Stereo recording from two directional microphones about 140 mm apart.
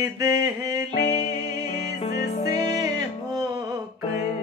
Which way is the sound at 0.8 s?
55° left (ahead or behind).